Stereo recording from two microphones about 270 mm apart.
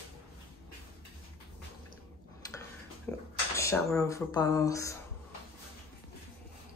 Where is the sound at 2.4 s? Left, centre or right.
Centre.